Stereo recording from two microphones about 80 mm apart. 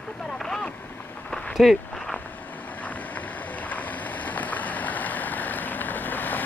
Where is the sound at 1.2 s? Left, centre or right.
Centre.